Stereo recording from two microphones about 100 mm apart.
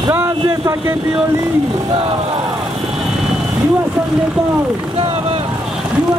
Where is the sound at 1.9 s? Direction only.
65° right (ahead or behind).